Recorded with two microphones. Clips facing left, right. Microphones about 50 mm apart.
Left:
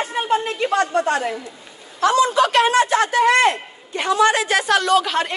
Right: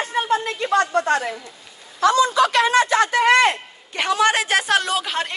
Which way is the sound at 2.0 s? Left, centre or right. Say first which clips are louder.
Even; left.